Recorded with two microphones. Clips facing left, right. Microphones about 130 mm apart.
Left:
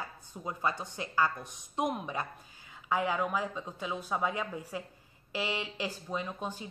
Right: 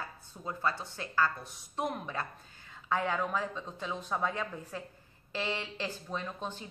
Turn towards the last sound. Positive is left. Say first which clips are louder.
# left 2 dB
turn(degrees=10)  # may be behind; listen again after turning